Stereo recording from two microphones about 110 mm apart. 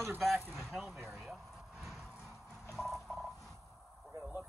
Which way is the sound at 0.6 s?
Centre (ahead or behind).